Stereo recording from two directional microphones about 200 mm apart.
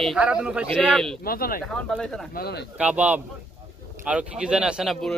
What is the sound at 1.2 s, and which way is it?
Speech, 50° left (ahead or behind).